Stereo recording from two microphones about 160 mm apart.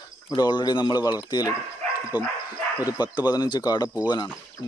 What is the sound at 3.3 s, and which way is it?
Speech, 25° left (ahead or behind).